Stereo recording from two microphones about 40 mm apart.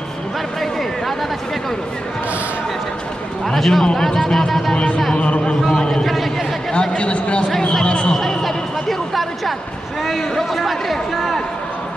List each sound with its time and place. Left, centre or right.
3.4 s a man's voice: centre
4.7 s speech: left
5.7 s speech: centre
6.7 s speech: left
7.8 s a sound: left
8.1 s a sound: centre
10.3 s a man's voice: centre